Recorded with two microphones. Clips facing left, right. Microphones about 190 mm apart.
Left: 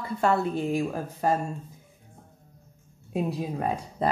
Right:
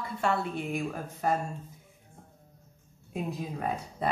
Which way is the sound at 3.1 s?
40° left (ahead or behind).